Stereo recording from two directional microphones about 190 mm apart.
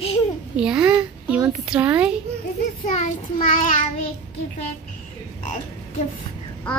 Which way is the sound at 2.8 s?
40° left (ahead or behind).